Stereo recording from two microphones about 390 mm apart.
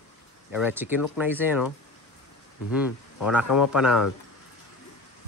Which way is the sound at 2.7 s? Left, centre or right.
Centre.